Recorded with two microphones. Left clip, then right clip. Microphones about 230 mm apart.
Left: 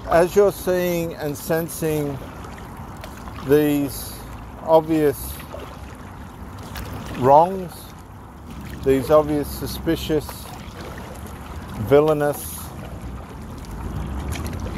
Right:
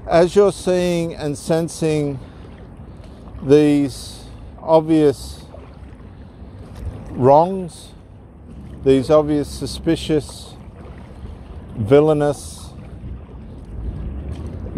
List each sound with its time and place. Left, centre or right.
0.1 s speech: right
3.4 s speech: right
7.2 s speech: right
8.8 s speech: right
11.9 s speech: right